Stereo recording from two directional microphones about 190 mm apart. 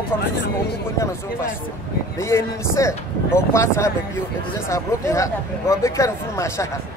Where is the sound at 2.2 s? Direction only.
15° left (ahead or behind).